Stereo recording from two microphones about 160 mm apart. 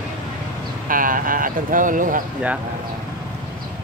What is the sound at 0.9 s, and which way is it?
Speech, 60° right (ahead or behind).